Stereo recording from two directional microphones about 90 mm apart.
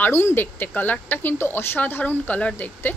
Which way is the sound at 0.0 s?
25° left (ahead or behind).